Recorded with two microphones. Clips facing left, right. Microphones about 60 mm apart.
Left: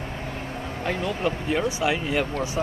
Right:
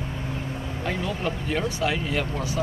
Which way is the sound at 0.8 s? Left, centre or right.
Centre.